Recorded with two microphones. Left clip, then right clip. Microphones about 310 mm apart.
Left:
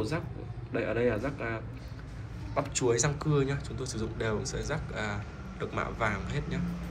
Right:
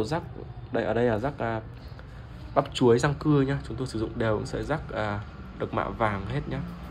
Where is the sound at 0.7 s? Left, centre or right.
Right.